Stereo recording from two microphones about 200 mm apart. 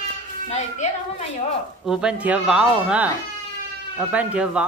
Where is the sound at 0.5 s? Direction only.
35° left (ahead or behind).